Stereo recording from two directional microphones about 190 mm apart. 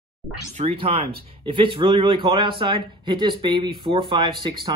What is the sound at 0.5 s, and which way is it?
Speech, 30° right (ahead or behind).